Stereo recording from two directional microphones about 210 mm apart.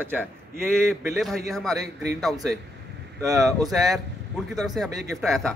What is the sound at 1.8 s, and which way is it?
Speech, 50° right (ahead or behind).